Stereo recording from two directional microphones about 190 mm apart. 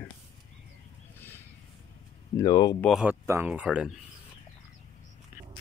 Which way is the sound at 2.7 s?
Centre (ahead or behind).